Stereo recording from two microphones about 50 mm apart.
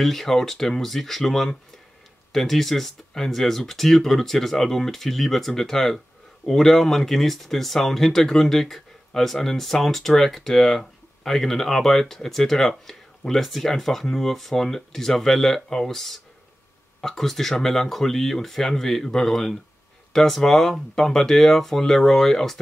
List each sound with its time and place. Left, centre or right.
0.0 s speech: centre